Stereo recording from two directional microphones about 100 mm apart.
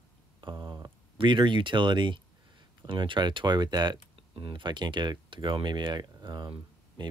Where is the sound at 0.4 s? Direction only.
50° right (ahead or behind).